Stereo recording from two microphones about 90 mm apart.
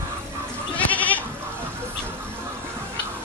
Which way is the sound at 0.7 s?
15° left (ahead or behind).